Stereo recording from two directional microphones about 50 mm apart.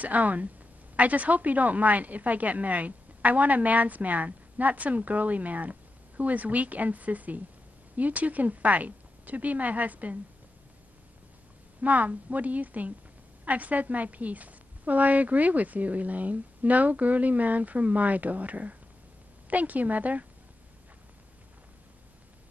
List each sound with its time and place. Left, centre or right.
0.0 s a woman's voice: right
11.8 s a woman's voice: right